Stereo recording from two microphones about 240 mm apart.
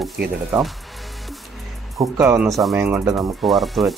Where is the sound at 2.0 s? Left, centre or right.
Centre.